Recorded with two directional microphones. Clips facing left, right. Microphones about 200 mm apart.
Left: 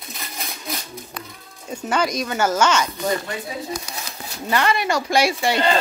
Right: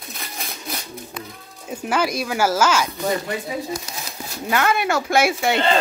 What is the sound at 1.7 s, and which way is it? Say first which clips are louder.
Speech: even; 5° right (ahead or behind).